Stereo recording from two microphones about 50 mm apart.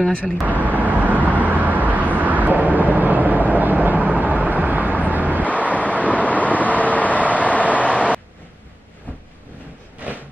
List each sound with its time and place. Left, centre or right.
0.5 s vehicle: right
5.5 s vehicle: left